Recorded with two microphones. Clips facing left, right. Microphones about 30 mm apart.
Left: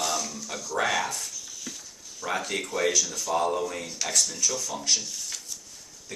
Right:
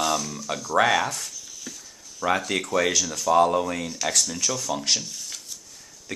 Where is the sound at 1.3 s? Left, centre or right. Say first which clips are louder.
Even; centre.